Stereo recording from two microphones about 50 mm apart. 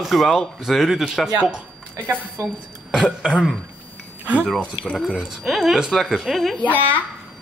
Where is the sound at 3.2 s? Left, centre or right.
Centre.